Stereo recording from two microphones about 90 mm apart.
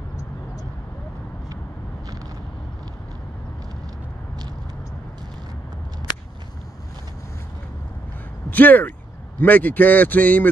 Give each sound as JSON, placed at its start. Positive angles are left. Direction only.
{"t": 8.5, "sound": "speech", "side_deg": 20}